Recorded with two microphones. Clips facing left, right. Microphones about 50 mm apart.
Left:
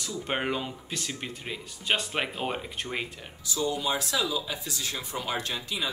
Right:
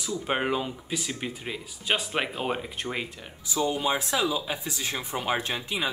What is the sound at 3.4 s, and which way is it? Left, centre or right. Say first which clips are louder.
Speech: right 3 dB; right.